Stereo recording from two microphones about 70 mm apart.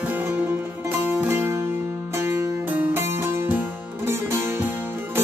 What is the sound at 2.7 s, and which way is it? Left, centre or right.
Music, right.